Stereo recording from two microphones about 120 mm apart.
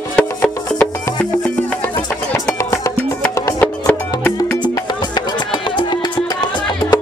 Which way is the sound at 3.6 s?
10° left (ahead or behind).